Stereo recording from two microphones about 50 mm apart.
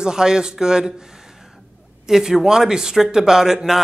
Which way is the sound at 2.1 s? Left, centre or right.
Centre.